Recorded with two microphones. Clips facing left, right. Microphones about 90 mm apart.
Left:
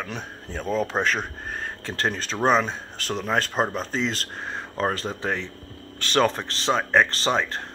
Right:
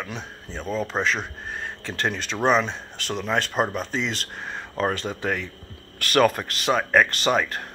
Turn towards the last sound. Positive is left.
turn(degrees=30)  # may be behind; listen again after turning